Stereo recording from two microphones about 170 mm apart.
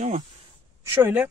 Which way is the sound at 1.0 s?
15° right (ahead or behind).